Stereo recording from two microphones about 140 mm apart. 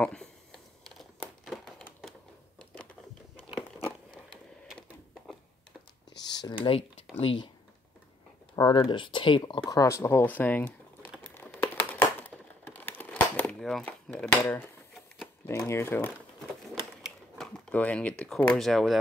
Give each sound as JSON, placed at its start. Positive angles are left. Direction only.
{"t": 0.0, "sound": "a sound", "side_deg": 5}
{"t": 4.3, "sound": "printer", "side_deg": 5}
{"t": 6.6, "sound": "speech", "side_deg": 45}
{"t": 8.5, "sound": "speech", "side_deg": 35}
{"t": 11.2, "sound": "crumpling", "side_deg": 15}
{"t": 15.4, "sound": "speech", "side_deg": 20}
{"t": 17.0, "sound": "speech", "side_deg": 5}